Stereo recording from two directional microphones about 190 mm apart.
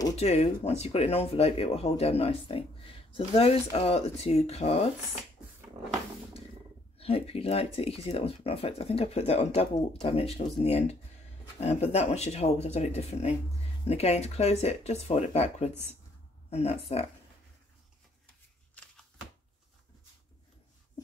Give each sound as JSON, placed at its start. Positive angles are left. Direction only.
{"t": 0.1, "sound": "speech", "side_deg": 35}
{"t": 7.0, "sound": "speech", "side_deg": 30}